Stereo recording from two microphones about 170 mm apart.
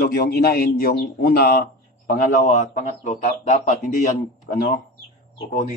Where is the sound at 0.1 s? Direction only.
65° left (ahead or behind).